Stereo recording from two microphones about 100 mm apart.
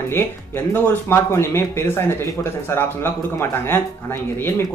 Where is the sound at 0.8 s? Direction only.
25° left (ahead or behind).